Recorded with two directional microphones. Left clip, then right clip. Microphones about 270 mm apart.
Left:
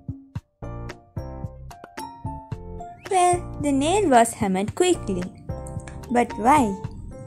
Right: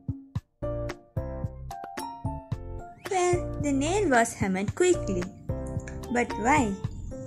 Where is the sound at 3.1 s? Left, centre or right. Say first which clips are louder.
Left 7 dB; centre.